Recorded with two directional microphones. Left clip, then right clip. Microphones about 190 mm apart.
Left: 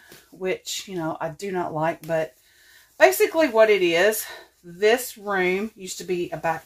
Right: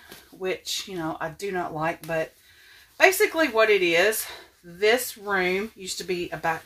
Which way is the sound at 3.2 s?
35° left (ahead or behind).